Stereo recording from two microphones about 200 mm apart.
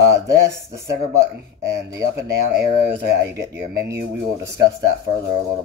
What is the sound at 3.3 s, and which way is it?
Speech, 15° right (ahead or behind).